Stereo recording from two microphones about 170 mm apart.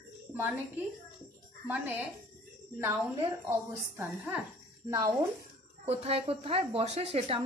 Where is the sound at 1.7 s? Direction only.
15° right (ahead or behind).